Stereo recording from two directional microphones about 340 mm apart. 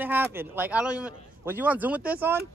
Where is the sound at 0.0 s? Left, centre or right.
Centre.